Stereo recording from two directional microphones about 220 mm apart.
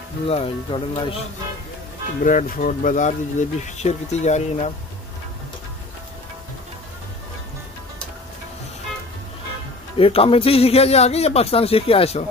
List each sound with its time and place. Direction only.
0.3 s speech: 25° left (ahead or behind)
2.2 s speech: 35° left (ahead or behind)
9.9 s speech: 25° left (ahead or behind)